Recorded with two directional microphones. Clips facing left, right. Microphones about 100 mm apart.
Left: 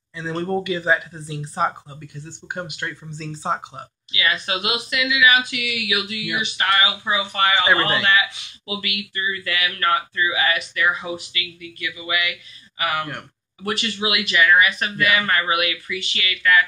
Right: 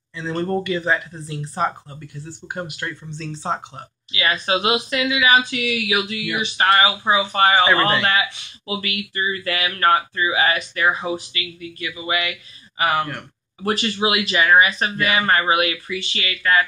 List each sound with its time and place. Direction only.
0.1 s speech: 10° left (ahead or behind)
4.1 s speech: 35° right (ahead or behind)